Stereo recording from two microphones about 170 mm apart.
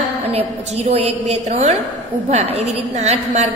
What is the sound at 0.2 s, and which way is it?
A woman's voice, 35° right (ahead or behind).